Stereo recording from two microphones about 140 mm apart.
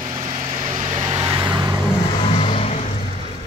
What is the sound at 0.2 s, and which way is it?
Vehicle, 50° right (ahead or behind).